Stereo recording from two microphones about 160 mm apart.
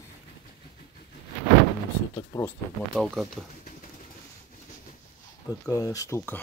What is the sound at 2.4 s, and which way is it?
Speech, 5° left (ahead or behind).